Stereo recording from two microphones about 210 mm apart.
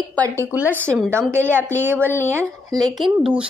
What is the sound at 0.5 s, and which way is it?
A woman's voice, 10° right (ahead or behind).